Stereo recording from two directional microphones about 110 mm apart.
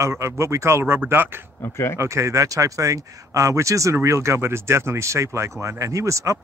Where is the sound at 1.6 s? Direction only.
25° left (ahead or behind).